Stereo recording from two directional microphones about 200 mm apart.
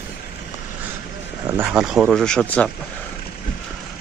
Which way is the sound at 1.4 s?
10° right (ahead or behind).